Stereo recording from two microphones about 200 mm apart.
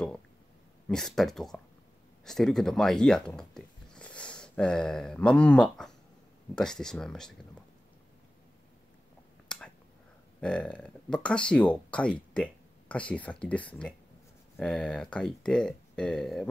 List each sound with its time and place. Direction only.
0.8 s speech: centre (ahead or behind)
10.4 s speech: 5° left (ahead or behind)